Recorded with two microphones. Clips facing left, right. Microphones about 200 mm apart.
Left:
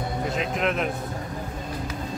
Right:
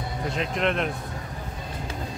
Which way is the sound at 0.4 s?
Centre (ahead or behind).